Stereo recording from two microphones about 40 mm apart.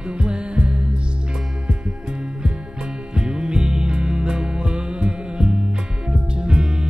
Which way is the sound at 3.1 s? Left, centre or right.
Right.